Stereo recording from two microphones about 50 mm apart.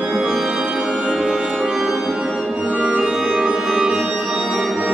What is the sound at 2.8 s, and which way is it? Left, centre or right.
Music, centre.